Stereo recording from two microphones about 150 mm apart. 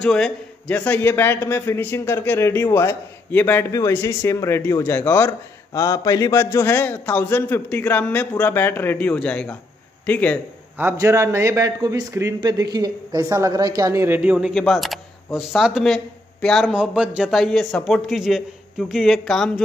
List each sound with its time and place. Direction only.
0.0 s a man's voice: 5° left (ahead or behind)
10.8 s a man's voice: 20° right (ahead or behind); by 19.6 s centre (ahead or behind)